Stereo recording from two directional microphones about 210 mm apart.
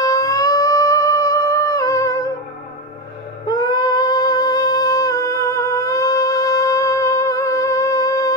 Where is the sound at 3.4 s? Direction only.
15° left (ahead or behind).